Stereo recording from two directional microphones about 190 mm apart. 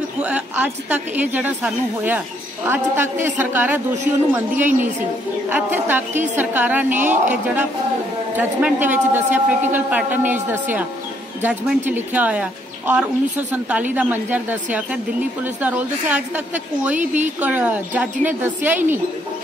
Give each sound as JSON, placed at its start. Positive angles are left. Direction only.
{"t": 0.2, "sound": "a woman's voice", "side_deg": -5}
{"t": 8.4, "sound": "a woman's voice", "side_deg": -10}
{"t": 17.0, "sound": "speech", "side_deg": -40}
{"t": 17.4, "sound": "a woman's voice", "side_deg": -10}